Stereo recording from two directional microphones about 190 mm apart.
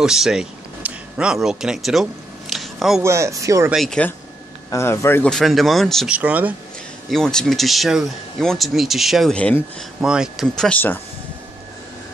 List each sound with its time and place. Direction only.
0.0 s speech: 5° right (ahead or behind)
2.5 s a sound: centre (ahead or behind)
3.0 s speech: 15° right (ahead or behind)
3.7 s speech: 5° left (ahead or behind)
4.6 s speech: 15° left (ahead or behind); by 6.5 s 10° right (ahead or behind)
7.1 s speech: 5° left (ahead or behind)